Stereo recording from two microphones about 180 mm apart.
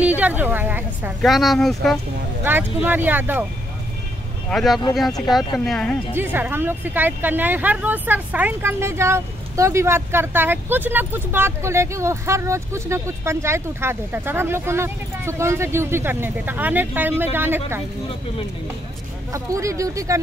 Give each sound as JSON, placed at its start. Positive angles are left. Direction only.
{"t": 0.0, "sound": "a woman's voice", "side_deg": -10}
{"t": 1.2, "sound": "speech", "side_deg": 0}
{"t": 2.4, "sound": "speech", "side_deg": -10}
{"t": 4.5, "sound": "speech", "side_deg": 0}
{"t": 6.1, "sound": "speech", "side_deg": -10}
{"t": 19.3, "sound": "speech", "side_deg": -15}